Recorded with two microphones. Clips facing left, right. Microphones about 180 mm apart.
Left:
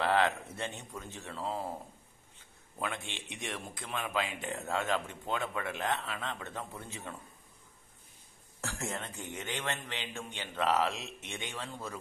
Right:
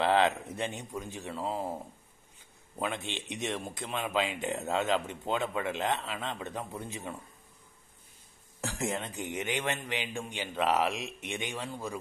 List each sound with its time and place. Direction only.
0.0 s a man's voice: 20° right (ahead or behind)
2.8 s speech: 20° right (ahead or behind)
8.5 s a man's voice: 15° right (ahead or behind)